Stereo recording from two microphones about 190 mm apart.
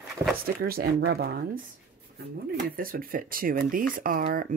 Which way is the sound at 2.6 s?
50° right (ahead or behind).